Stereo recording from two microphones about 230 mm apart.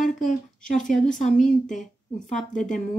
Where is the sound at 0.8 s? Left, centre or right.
Centre.